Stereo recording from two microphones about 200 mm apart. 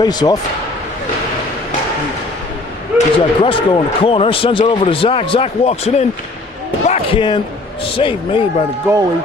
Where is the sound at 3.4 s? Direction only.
25° left (ahead or behind).